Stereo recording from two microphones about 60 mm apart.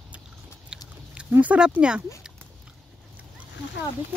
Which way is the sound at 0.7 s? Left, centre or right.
Centre.